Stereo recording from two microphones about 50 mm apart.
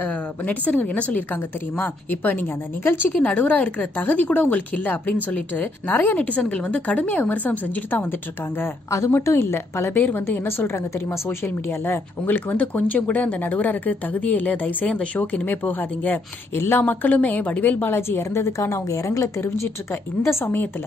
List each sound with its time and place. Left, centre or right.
0.0 s a woman's voice: left
6.1 s a woman's voice: left
9.2 s a woman's voice: left
9.9 s a woman's voice: left
11.2 s a woman's voice: left
16.5 s a woman's voice: left
16.8 s a woman's voice: left
17.9 s a woman's voice: left
18.2 s a woman's voice: left